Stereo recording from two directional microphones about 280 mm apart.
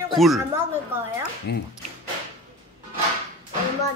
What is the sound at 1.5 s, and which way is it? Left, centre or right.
Speech, left.